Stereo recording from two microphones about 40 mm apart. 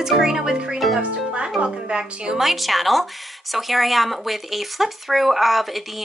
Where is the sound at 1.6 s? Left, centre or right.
Right.